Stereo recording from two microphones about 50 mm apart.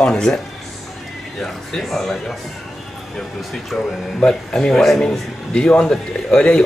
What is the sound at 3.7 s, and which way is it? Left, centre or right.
A man's voice, centre.